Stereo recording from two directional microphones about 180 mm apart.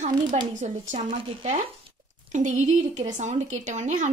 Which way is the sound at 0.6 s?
40° right (ahead or behind).